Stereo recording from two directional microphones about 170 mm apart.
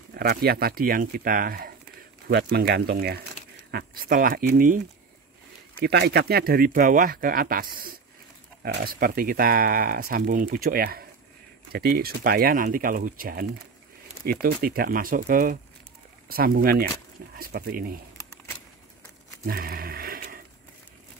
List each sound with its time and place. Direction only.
0.1 s speech: 65° right (ahead or behind)
3.7 s speech: 60° right (ahead or behind)
5.8 s speech: 75° right (ahead or behind); by 17.9 s 60° right (ahead or behind)
19.4 s a sound: 60° right (ahead or behind)